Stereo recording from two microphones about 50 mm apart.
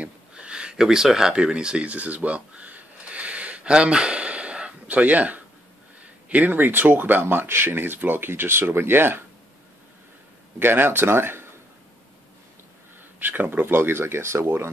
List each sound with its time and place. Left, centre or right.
0.0 s a sound: centre
6.2 s speech: right
10.6 s speech: right
13.2 s speech: right